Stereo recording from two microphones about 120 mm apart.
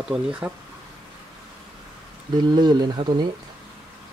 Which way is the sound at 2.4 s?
35° right (ahead or behind).